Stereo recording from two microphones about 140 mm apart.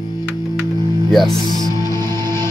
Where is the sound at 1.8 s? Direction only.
20° left (ahead or behind).